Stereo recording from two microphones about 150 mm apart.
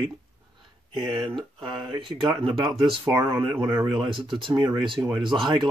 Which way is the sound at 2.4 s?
35° right (ahead or behind).